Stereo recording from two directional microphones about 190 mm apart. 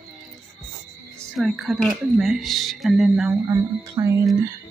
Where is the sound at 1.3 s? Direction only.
Centre (ahead or behind).